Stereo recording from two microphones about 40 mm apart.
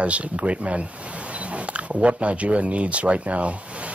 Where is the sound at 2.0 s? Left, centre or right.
Right.